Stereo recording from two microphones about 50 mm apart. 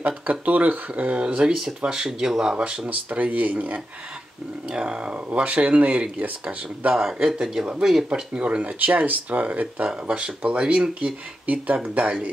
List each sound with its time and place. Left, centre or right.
0.0 s speech: right; by 2.5 s centre
2.5 s speech: right
4.7 s speech: right
7.0 s speech: centre
8.1 s speech: right
11.4 s speech: right